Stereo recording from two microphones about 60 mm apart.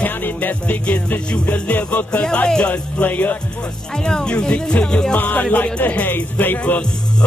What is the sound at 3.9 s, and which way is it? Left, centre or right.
Speech, centre.